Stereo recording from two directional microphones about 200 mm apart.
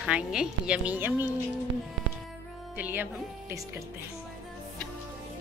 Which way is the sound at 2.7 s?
10° right (ahead or behind).